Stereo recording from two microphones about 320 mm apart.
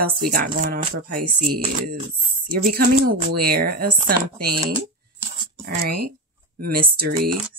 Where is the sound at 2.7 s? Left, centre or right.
Right.